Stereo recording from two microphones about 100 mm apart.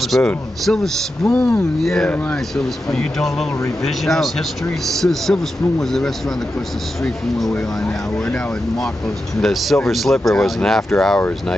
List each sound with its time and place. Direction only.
0.0 s a man's voice: centre (ahead or behind)
1.8 s speech: centre (ahead or behind)
9.4 s speech: centre (ahead or behind)